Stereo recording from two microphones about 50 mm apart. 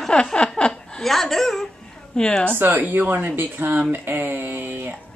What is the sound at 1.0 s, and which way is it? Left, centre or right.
Speech, centre.